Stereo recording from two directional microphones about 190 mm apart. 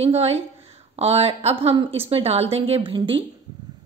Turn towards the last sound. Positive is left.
turn(degrees=-25)  # may be behind; listen again after turning